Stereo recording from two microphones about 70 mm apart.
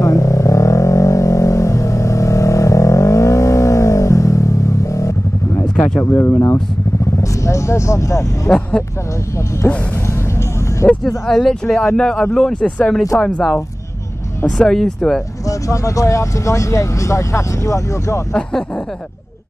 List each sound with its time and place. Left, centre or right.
0.0 s vehicle: left
5.9 s speech: left
8.5 s speech: centre
10.9 s speech: centre
14.6 s speech: centre
15.7 s speech: left